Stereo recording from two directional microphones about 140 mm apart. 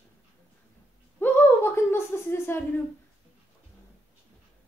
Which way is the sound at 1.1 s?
15° left (ahead or behind).